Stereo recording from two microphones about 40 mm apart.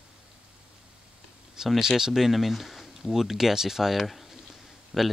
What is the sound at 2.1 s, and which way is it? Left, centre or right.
A man's voice, centre.